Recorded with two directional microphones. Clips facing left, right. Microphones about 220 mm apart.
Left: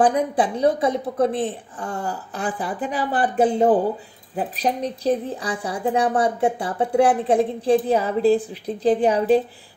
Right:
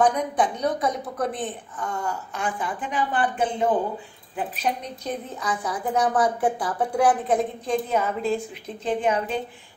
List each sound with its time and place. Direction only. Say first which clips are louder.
0.0 s a woman's voice: left 3 dB; 30° left (ahead or behind)